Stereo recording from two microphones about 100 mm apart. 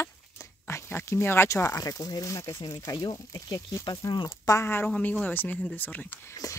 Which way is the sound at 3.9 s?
45° left (ahead or behind).